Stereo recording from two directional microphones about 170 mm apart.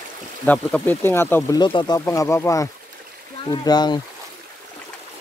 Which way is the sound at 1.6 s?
25° left (ahead or behind).